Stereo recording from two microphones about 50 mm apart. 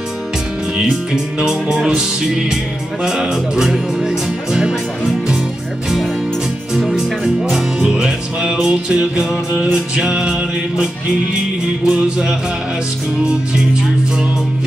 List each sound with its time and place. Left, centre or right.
0.7 s music: centre
7.0 s music: centre
11.9 s music: centre